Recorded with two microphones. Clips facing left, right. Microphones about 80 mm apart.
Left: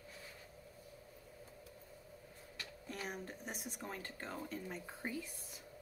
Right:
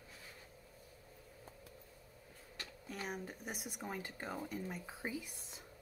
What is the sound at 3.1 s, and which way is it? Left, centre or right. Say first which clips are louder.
Speech: right 1 dB; centre.